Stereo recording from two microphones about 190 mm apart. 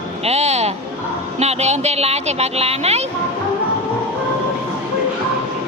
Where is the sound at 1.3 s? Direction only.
35° right (ahead or behind).